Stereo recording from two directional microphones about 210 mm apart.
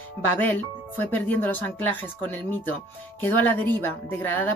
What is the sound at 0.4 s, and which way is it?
Speech, 10° left (ahead or behind).